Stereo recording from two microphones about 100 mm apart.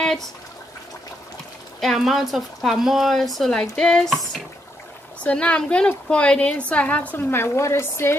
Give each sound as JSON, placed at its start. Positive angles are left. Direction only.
{"t": 0.0, "sound": "a sound", "side_deg": 5}
{"t": 1.8, "sound": "a woman's voice", "side_deg": 0}
{"t": 5.2, "sound": "a woman's voice", "side_deg": 10}